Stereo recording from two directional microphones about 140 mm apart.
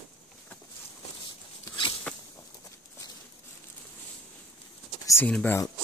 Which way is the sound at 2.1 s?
10° left (ahead or behind).